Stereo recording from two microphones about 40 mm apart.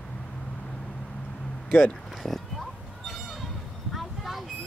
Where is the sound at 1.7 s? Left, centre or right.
Left.